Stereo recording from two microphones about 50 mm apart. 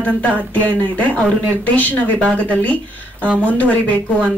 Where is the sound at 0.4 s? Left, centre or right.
Left.